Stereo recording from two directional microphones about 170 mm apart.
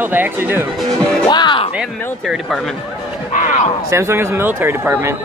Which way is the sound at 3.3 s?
45° left (ahead or behind).